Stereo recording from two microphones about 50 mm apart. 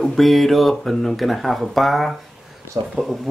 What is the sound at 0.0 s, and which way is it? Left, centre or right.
Speech, centre.